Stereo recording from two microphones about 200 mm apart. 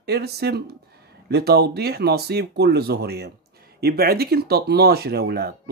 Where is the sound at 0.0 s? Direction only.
55° right (ahead or behind).